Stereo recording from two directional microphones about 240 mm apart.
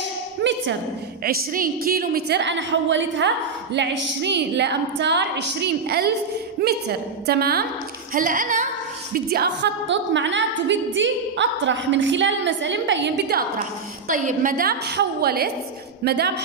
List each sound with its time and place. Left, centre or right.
0.4 s a sound: right
1.2 s a woman's voice: right
14.0 s a woman's voice: right